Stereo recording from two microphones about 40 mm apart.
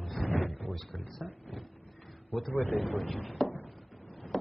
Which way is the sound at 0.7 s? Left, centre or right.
Centre.